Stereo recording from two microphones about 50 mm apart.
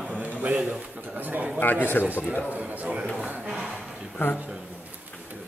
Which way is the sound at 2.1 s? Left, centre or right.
Right.